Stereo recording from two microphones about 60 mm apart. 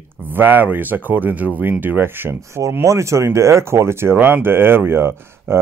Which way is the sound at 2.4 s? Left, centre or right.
Right.